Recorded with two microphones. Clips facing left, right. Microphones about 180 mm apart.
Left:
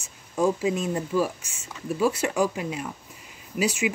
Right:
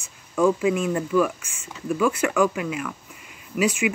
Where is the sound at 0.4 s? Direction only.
35° left (ahead or behind).